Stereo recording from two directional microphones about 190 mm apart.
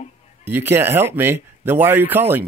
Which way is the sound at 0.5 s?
10° right (ahead or behind).